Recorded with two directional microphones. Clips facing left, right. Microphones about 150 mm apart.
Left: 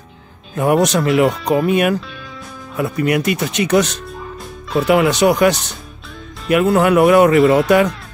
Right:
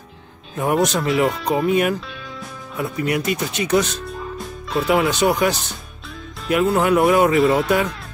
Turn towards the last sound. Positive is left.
turn(degrees=0)  # may be behind; listen again after turning